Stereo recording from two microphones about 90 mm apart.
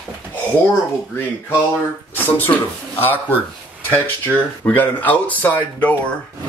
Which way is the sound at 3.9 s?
20° left (ahead or behind).